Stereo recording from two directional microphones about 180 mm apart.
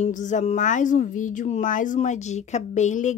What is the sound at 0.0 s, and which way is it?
A woman's voice, 45° left (ahead or behind).